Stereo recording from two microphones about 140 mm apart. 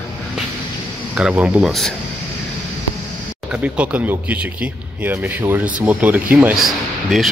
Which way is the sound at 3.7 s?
10° right (ahead or behind).